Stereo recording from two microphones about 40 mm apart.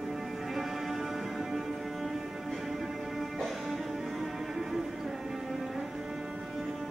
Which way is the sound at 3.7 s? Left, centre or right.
Centre.